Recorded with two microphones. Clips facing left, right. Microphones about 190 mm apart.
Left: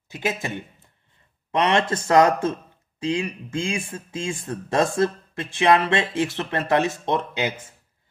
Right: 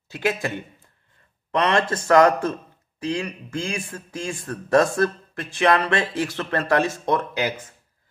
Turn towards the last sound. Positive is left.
turn(degrees=25)  # may be behind; listen again after turning